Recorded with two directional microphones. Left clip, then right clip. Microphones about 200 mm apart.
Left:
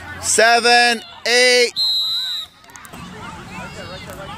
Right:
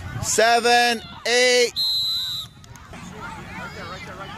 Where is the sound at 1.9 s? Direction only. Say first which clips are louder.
Left 3 dB; 25° left (ahead or behind).